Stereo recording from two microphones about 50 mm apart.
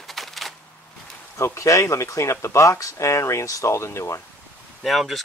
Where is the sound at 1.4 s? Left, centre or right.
Left.